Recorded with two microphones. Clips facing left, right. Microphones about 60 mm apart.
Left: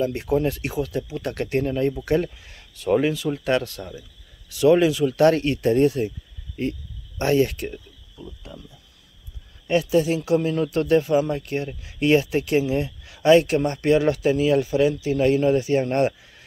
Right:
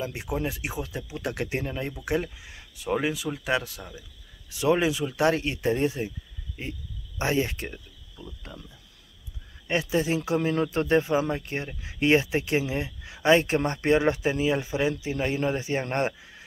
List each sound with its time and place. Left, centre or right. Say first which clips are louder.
0.0 s speech: left 8 dB; centre
4.5 s speech: left 7 dB; right
7.2 s speech: left 6 dB; centre
7.7 s cricket: left 5 dB; centre
9.7 s speech: left 6 dB; right